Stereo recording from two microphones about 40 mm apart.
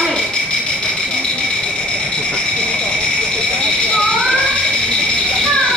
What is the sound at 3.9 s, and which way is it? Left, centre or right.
Children playing, centre.